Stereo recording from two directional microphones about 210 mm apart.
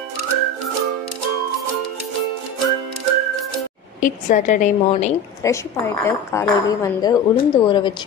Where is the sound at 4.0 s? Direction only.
35° left (ahead or behind).